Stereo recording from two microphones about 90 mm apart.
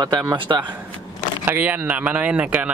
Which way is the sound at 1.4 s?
20° right (ahead or behind).